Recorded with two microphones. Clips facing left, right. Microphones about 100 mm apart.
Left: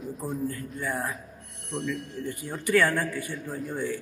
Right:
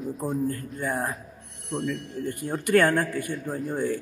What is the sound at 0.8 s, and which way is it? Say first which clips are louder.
Speech: right 1 dB; 50° right (ahead or behind).